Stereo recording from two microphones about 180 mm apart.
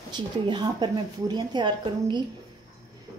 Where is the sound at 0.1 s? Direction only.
25° right (ahead or behind).